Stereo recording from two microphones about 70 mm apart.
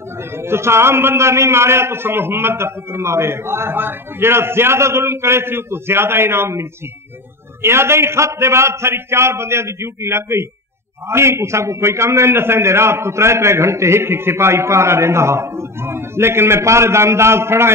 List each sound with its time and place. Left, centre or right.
0.4 s a man's voice: right